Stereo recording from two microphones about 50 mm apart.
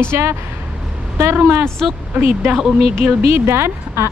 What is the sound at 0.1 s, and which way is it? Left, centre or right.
Speech, right.